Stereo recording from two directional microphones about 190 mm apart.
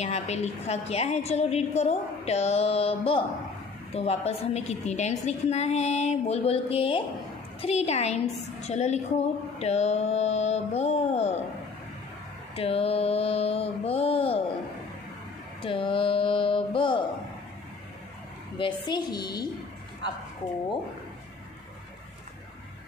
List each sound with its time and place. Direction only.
0.0 s a woman's voice: 35° left (ahead or behind)
12.5 s a woman's voice: 30° left (ahead or behind)
15.6 s speech: 30° left (ahead or behind)
18.6 s speech: 20° left (ahead or behind)